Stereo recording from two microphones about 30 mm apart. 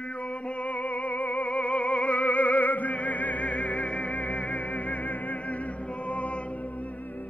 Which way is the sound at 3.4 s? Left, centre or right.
Left.